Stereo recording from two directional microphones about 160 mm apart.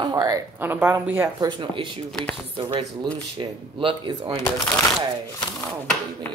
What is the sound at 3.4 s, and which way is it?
Speech, 30° right (ahead or behind).